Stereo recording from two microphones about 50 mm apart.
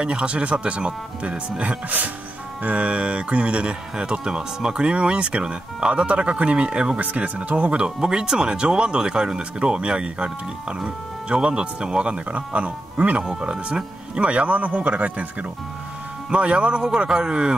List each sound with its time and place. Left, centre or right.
0.0 s speech: centre
16.3 s speech: right